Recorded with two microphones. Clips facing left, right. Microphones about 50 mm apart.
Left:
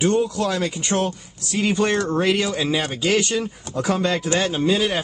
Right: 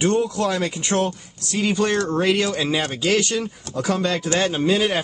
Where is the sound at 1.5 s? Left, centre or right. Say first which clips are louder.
Even; centre.